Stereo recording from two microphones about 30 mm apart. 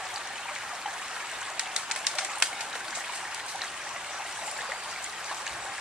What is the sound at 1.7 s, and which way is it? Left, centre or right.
Bird, right.